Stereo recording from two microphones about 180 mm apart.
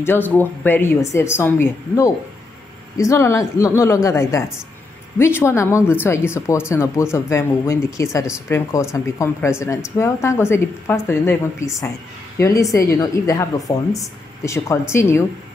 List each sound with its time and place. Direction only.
0.0 s a woman's voice: 10° left (ahead or behind)